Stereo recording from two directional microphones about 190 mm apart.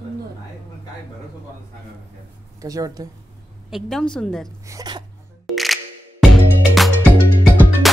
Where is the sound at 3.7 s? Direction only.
Centre (ahead or behind).